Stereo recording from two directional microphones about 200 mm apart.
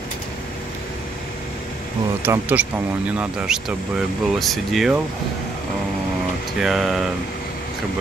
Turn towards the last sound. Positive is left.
turn(degrees=0)  # may be behind; listen again after turning